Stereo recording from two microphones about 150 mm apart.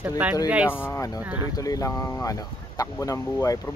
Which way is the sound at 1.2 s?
10° right (ahead or behind).